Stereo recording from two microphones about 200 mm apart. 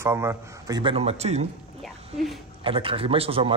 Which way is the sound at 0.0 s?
15° right (ahead or behind).